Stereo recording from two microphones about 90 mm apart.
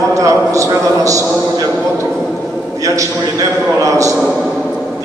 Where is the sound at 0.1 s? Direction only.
35° right (ahead or behind).